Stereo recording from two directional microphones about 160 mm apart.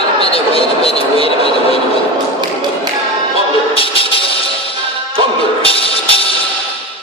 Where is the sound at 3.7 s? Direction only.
35° left (ahead or behind).